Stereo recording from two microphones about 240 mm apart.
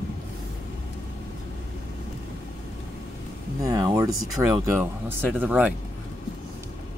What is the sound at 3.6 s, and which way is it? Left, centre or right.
Speech, centre.